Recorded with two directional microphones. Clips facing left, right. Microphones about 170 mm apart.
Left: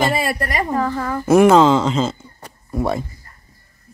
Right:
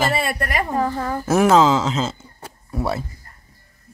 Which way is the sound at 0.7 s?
30° right (ahead or behind).